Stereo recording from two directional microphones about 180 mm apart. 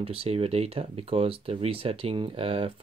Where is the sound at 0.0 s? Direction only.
35° right (ahead or behind).